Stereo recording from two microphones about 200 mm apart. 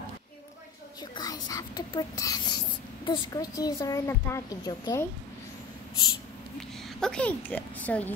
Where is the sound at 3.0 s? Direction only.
20° left (ahead or behind).